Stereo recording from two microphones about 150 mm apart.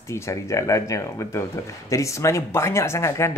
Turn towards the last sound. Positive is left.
turn(degrees=20)  # may be behind; listen again after turning